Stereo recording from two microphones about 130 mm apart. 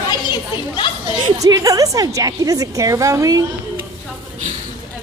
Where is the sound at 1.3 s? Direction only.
25° right (ahead or behind).